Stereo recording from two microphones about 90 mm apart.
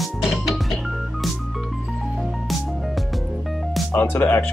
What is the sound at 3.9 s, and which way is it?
Speech, 25° left (ahead or behind).